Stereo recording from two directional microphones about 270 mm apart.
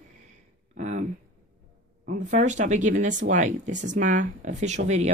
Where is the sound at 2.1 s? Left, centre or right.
Right.